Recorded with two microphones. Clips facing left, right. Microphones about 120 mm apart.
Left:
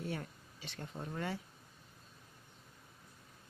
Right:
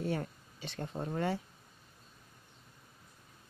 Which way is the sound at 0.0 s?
45° right (ahead or behind).